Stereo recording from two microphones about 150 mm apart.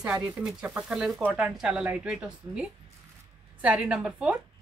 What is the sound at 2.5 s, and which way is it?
Speech, 20° right (ahead or behind).